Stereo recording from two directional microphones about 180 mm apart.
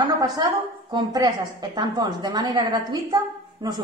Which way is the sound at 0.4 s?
20° right (ahead or behind).